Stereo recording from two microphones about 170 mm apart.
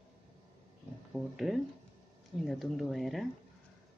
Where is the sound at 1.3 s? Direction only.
Centre (ahead or behind).